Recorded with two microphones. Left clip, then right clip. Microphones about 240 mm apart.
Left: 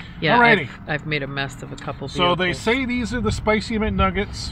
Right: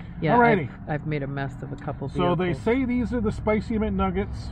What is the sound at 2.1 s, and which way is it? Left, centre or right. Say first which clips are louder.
Speech: left 5 dB; left.